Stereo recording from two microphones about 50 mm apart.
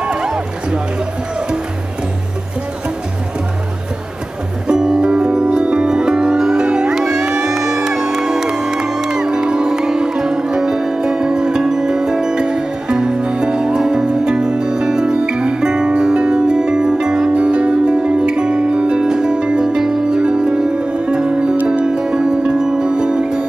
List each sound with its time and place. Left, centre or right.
0.0 s music: centre
4.6 s music: centre